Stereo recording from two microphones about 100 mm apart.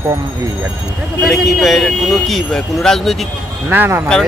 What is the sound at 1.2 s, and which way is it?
Speech, centre (ahead or behind).